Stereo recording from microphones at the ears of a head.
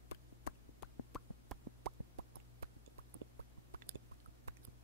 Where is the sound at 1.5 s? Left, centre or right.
Right.